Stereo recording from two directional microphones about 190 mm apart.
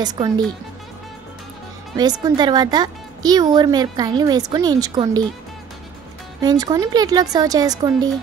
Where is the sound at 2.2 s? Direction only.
20° right (ahead or behind).